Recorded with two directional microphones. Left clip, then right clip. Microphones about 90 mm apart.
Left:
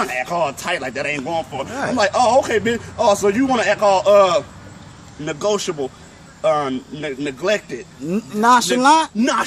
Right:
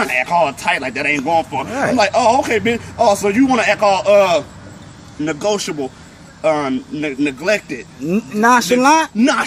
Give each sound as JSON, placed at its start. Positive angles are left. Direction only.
{"t": 0.0, "sound": "a man's voice", "side_deg": 30}
{"t": 1.7, "sound": "speech", "side_deg": -30}
{"t": 2.0, "sound": "a man's voice", "side_deg": 30}
{"t": 8.0, "sound": "speech", "side_deg": -5}
{"t": 9.2, "sound": "a man's voice", "side_deg": 40}